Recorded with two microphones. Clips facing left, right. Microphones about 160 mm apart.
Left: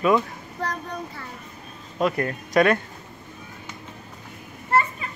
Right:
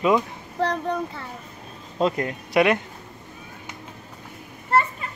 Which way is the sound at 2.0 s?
20° right (ahead or behind).